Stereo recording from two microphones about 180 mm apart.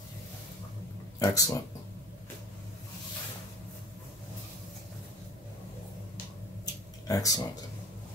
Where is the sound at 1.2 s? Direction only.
20° left (ahead or behind).